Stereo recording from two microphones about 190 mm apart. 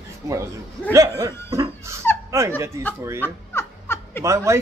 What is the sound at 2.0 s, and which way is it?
Dog, 10° left (ahead or behind).